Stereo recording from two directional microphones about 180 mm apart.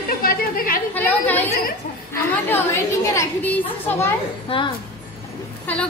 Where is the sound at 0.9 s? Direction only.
10° left (ahead or behind).